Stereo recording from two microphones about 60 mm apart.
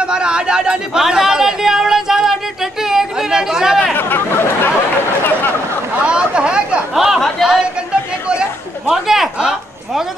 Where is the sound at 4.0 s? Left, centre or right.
Left.